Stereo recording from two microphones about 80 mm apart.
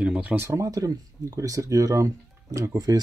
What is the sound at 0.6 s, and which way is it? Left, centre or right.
Speech, right.